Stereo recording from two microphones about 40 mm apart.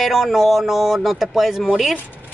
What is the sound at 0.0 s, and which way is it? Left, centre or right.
Speech, centre.